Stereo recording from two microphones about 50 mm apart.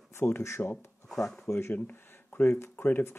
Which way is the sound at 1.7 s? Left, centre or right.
Left.